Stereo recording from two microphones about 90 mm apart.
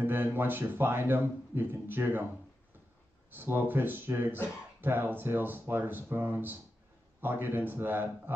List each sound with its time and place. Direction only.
0.0 s speech: 25° right (ahead or behind)
3.3 s speech: 20° right (ahead or behind)